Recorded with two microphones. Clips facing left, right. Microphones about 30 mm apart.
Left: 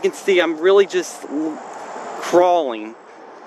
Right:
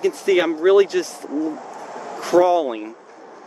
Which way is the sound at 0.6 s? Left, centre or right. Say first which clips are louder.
Left 1 dB; left.